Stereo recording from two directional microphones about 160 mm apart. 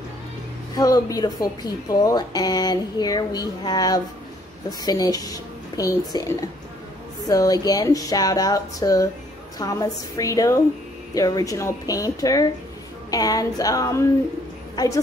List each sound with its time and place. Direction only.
0.7 s speech: 25° left (ahead or behind)